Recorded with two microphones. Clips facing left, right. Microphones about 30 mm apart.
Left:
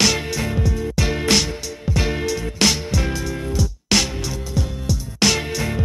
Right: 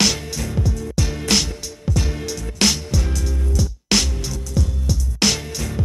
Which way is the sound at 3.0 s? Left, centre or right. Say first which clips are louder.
Left 3 dB; left.